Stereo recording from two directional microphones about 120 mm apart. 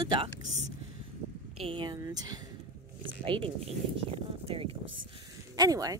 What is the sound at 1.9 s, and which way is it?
Speech, 30° right (ahead or behind).